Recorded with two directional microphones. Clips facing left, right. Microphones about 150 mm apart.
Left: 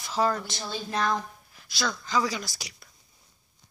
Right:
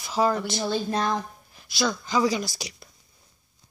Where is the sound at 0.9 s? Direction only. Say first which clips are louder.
Right 2 dB; 25° right (ahead or behind).